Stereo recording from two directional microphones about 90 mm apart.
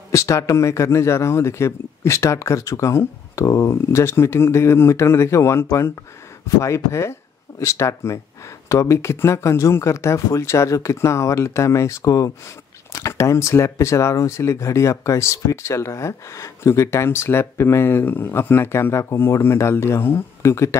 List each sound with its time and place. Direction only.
0.1 s speech: 35° left (ahead or behind)